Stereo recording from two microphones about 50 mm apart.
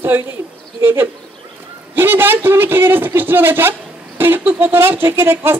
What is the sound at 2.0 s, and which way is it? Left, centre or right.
Speech, right.